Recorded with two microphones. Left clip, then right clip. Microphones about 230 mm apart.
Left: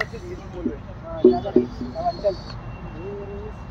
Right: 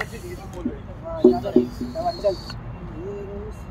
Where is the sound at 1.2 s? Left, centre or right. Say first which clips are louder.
Even; right.